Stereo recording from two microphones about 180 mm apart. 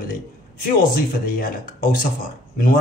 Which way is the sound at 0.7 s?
50° left (ahead or behind).